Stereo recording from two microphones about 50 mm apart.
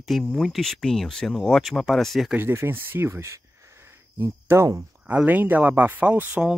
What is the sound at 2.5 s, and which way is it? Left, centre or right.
Speech, right.